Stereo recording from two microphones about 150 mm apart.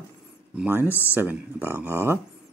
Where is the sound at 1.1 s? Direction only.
10° right (ahead or behind).